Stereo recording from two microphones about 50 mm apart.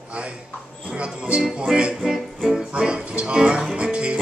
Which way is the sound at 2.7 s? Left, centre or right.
Centre.